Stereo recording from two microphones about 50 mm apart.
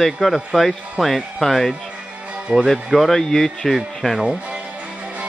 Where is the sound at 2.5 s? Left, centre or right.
Right.